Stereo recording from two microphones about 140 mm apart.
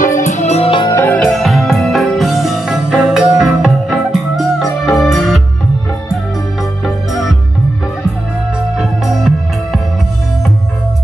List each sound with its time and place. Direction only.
0.0 s music: 70° left (ahead or behind); by 0.8 s 45° left (ahead or behind)
0.8 s music: 20° left (ahead or behind)
1.2 s music: centre (ahead or behind)
8.7 s music: centre (ahead or behind)